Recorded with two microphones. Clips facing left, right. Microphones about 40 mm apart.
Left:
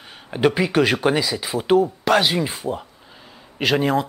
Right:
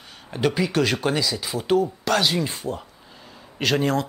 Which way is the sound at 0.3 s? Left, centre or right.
Centre.